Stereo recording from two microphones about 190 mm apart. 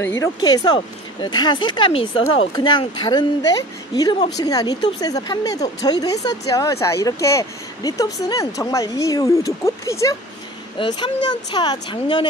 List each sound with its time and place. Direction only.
0.0 s speech: 15° left (ahead or behind)